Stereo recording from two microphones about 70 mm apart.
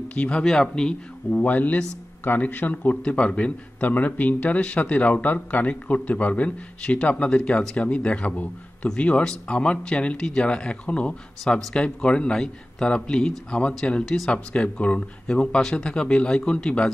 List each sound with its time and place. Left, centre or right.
0.1 s speech: centre
1.3 s a man's voice: left